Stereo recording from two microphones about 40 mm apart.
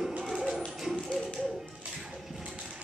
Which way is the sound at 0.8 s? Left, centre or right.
Centre.